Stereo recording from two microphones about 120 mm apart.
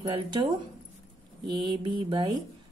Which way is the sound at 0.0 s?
40° right (ahead or behind).